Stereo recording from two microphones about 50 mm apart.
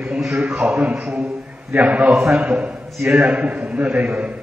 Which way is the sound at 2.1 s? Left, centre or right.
Centre.